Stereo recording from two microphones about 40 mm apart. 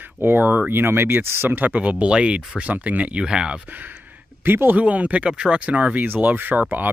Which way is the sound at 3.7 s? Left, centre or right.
Right.